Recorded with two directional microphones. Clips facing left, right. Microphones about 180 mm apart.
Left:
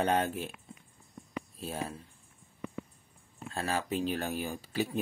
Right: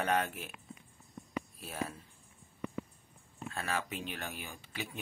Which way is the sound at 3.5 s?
30° left (ahead or behind).